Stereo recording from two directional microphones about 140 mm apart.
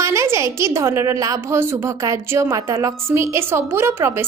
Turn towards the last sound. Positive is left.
turn(degrees=-15)  # may be behind; listen again after turning